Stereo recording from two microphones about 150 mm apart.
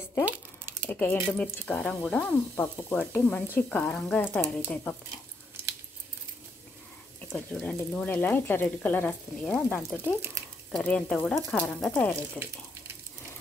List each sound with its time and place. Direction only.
0.2 s a sound: 15° right (ahead or behind)
0.8 s speech: 10° left (ahead or behind)
7.2 s speech: 10° left (ahead or behind)